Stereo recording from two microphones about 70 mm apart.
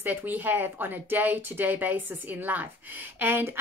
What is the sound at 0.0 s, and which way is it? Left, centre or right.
Speech, right.